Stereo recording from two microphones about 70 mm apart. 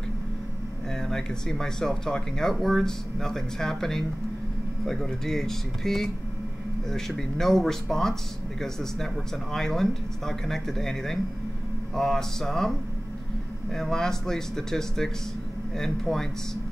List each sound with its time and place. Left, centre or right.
1.0 s speech: centre
13.7 s speech: centre